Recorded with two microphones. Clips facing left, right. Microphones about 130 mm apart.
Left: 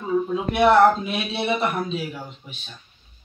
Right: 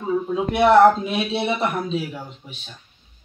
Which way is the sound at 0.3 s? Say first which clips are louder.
Right 2 dB; 25° right (ahead or behind).